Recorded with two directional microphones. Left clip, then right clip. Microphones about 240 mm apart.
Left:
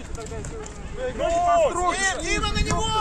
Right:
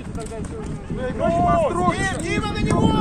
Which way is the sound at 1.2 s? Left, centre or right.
Left.